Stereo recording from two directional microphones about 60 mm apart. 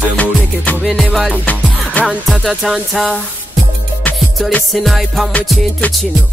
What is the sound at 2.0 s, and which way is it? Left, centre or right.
Music, left.